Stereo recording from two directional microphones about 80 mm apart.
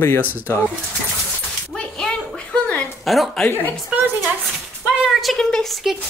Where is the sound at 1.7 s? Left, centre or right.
Centre.